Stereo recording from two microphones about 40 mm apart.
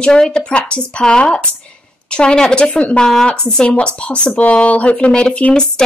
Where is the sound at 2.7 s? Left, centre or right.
Left.